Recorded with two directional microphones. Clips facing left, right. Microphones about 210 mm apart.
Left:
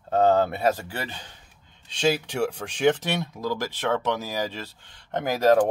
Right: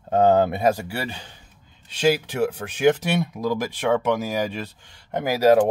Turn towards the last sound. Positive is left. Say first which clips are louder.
# right 3 dB
turn(degrees=-10)  # may be behind; listen again after turning